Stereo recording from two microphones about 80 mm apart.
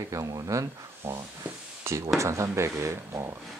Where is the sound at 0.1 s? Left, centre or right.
Right.